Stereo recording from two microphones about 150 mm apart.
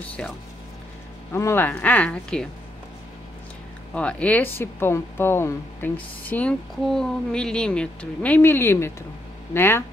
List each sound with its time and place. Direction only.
0.2 s speech: 5° left (ahead or behind)
1.3 s speech: 15° left (ahead or behind)
3.9 s speech: 10° left (ahead or behind)